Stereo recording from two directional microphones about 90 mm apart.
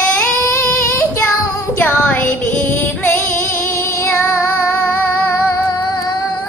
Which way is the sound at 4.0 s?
25° left (ahead or behind).